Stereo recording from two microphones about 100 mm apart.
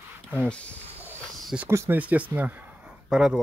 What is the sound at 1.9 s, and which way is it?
Speech, 15° right (ahead or behind).